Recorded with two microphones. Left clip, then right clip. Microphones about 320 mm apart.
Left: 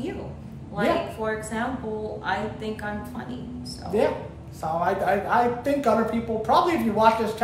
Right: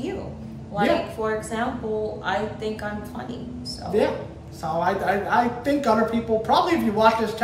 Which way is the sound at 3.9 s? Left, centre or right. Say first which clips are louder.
Right 1 dB; centre.